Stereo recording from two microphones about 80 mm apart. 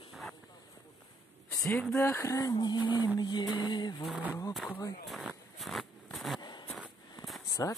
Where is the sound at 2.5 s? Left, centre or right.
Left.